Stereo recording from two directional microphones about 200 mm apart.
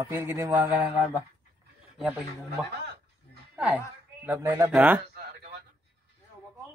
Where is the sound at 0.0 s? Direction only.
10° right (ahead or behind).